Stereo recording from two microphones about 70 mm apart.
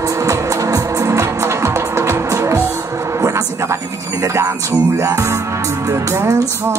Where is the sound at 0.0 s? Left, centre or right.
Right.